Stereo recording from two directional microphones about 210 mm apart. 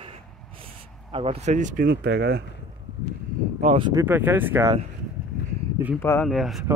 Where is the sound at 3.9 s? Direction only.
10° right (ahead or behind).